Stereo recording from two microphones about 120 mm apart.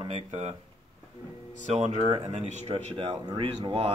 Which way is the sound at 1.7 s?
65° right (ahead or behind).